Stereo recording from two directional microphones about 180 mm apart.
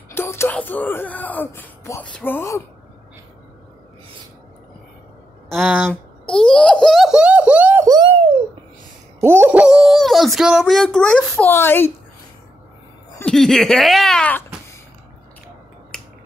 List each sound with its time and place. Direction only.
0.1 s speech: 15° left (ahead or behind)
5.5 s a child's voice: centre (ahead or behind)
7.8 s a sound: 20° right (ahead or behind)
9.2 s speech: 15° right (ahead or behind); by 11.9 s 10° left (ahead or behind)
13.2 s speech: 5° left (ahead or behind)
15.9 s finger snapping: 5° left (ahead or behind)